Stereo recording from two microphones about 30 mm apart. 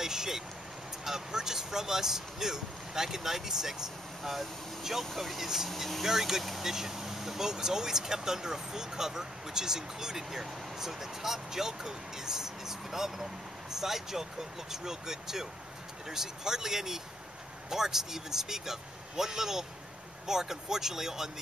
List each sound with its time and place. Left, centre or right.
0.0 s speech: centre